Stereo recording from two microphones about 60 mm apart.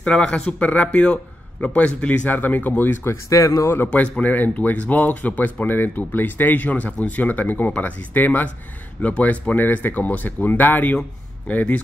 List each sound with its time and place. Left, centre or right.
0.0 s speech: centre; by 3.2 s left
3.3 s speech: left
3.8 s speech: left